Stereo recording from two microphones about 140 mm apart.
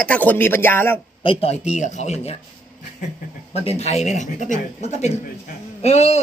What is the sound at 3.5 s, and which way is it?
Speech, 50° left (ahead or behind).